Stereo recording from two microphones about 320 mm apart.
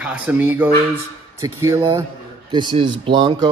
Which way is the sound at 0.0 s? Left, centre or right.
Centre.